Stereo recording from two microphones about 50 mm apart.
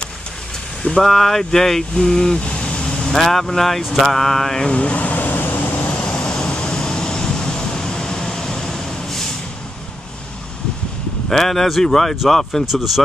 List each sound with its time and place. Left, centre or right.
1.0 s speech: centre
3.1 s a sound: centre
4.6 s air conditioning: left
5.9 s vehicle: left
11.2 s a sound: centre
12.2 s speech: centre
12.6 s speech: centre